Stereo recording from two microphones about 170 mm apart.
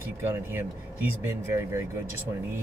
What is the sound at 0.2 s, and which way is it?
Speech, 15° right (ahead or behind).